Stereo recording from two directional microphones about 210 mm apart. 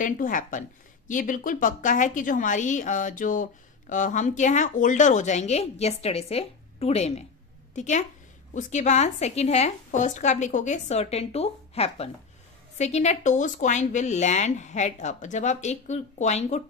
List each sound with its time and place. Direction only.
0.0 s a woman's voice: 40° left (ahead or behind)